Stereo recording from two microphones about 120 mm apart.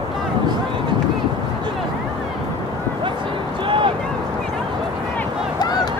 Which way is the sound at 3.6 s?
45° right (ahead or behind).